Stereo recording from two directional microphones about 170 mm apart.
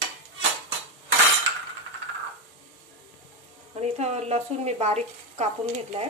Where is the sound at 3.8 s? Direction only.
40° right (ahead or behind).